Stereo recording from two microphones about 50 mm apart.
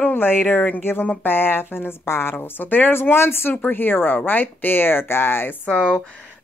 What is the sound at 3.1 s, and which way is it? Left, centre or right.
Speech, left.